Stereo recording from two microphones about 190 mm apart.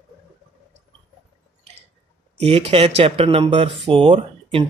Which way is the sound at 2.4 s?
30° right (ahead or behind).